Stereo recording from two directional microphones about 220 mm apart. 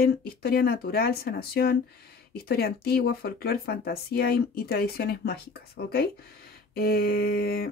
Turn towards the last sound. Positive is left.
turn(degrees=40)  # may be behind; listen again after turning